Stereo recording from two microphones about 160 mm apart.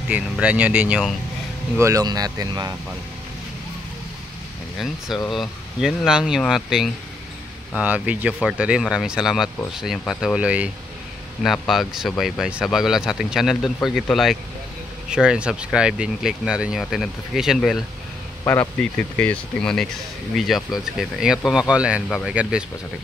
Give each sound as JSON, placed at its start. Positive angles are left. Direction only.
{"t": 0.1, "sound": "speech", "side_deg": -10}
{"t": 1.8, "sound": "speech", "side_deg": -20}
{"t": 4.7, "sound": "speech", "side_deg": 0}
{"t": 18.4, "sound": "speech", "side_deg": 15}